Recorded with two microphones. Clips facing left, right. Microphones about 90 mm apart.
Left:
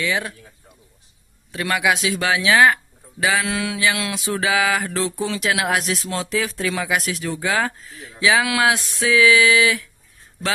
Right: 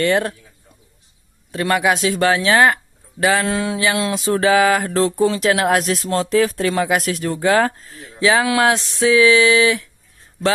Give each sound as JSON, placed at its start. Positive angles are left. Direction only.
{"t": 0.0, "sound": "speech", "side_deg": -60}
{"t": 1.5, "sound": "mantra", "side_deg": -35}
{"t": 8.2, "sound": "mantra", "side_deg": -35}